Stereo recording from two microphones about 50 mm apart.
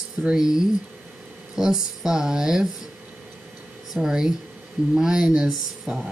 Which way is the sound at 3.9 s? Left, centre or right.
Centre.